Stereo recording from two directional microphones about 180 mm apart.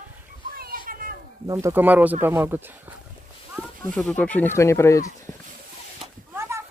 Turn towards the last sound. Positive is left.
turn(degrees=-15)  # may be behind; listen again after turning